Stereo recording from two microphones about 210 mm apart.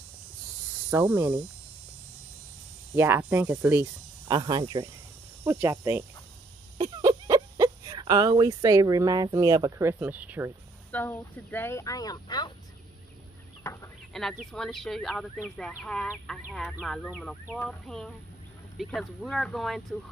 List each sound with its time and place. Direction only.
0.8 s speech: 10° right (ahead or behind)
3.0 s speech: 10° right (ahead or behind)
4.3 s speech: 20° right (ahead or behind)
10.9 s speech: 10° left (ahead or behind)
14.4 s speech: centre (ahead or behind)